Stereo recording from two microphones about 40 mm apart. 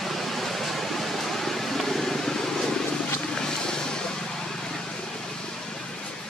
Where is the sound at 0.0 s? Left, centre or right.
Centre.